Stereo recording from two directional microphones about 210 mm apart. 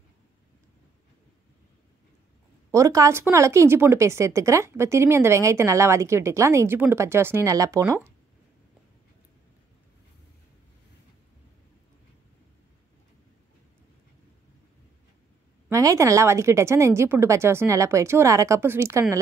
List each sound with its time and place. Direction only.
2.7 s speech: 15° right (ahead or behind)
15.7 s speech: 15° right (ahead or behind)